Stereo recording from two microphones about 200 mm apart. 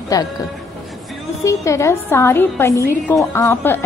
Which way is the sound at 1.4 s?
15° left (ahead or behind).